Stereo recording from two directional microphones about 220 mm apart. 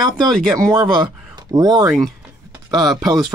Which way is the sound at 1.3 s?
20° right (ahead or behind).